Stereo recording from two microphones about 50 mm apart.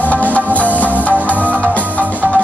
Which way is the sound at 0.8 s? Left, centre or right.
Right.